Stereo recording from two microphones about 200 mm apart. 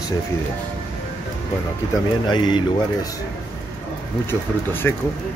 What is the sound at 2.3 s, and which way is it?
Speech, 25° left (ahead or behind).